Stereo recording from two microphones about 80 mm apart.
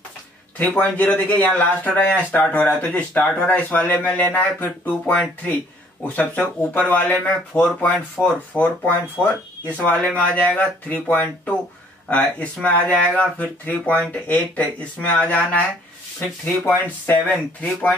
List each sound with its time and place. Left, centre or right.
0.6 s speech: centre